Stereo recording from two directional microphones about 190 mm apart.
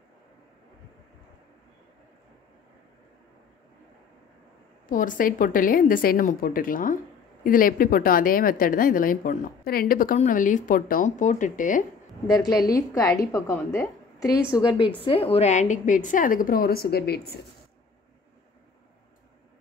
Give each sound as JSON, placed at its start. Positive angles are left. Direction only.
{"t": 4.8, "sound": "a woman's voice", "side_deg": 45}
{"t": 12.6, "sound": "a woman's voice", "side_deg": 15}
{"t": 15.0, "sound": "a woman's voice", "side_deg": 30}